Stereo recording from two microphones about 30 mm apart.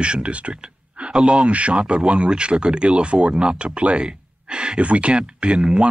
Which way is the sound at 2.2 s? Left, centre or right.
Right.